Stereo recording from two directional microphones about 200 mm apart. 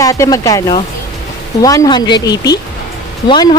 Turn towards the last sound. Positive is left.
turn(degrees=25)  # may be behind; listen again after turning